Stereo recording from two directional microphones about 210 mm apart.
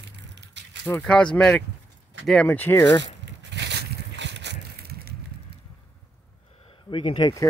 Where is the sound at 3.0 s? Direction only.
55° right (ahead or behind).